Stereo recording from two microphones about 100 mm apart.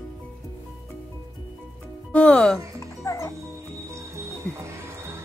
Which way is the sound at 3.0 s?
30° left (ahead or behind).